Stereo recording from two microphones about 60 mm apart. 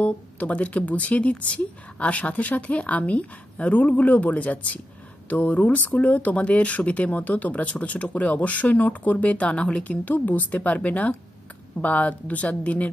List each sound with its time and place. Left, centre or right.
0.0 s speech: left